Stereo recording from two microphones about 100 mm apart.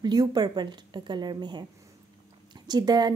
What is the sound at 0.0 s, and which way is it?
A woman's voice, 45° right (ahead or behind).